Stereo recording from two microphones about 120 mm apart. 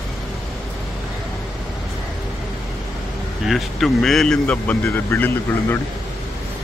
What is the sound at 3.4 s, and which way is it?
Speech, centre (ahead or behind).